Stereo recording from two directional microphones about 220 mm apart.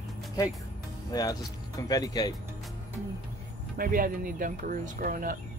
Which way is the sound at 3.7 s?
40° right (ahead or behind).